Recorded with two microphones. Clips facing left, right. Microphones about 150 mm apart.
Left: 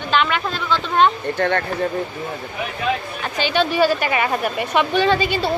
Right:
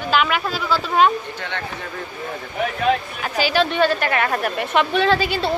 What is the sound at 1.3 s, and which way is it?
Speech, 50° left (ahead or behind).